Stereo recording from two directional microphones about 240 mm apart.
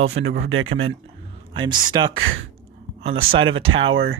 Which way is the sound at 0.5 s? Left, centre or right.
Right.